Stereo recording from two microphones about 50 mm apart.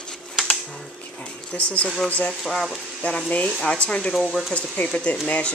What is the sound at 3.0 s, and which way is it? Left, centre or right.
Speech, left.